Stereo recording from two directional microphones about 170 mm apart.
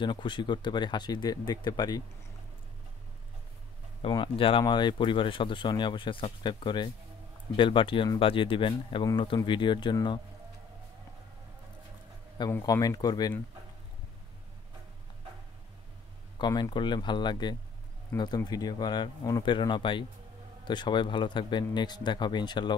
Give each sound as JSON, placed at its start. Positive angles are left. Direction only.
{"t": 0.0, "sound": "speech", "side_deg": 25}
{"t": 4.0, "sound": "speech", "side_deg": 30}
{"t": 12.4, "sound": "speech", "side_deg": 20}
{"t": 16.3, "sound": "speech", "side_deg": 25}